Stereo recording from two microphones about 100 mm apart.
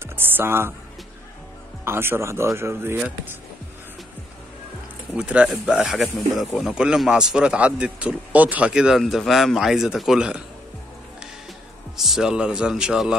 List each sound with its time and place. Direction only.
0.0 s music: 20° right (ahead or behind)
1.9 s speech: 25° right (ahead or behind)
5.1 s speech: 10° right (ahead or behind)
12.0 s speech: 5° right (ahead or behind)